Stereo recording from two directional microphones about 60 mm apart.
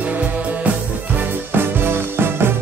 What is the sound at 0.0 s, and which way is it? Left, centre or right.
Music, right.